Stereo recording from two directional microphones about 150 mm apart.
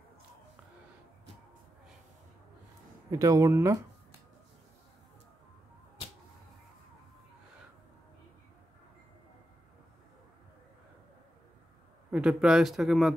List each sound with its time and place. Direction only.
3.1 s speech: 20° right (ahead or behind)
12.1 s speech: 5° right (ahead or behind)